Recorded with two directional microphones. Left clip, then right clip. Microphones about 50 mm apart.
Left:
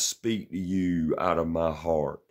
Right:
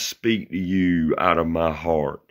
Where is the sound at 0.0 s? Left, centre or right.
Left.